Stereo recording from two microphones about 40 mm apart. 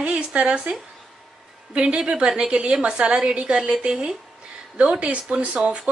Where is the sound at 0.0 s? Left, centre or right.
Right.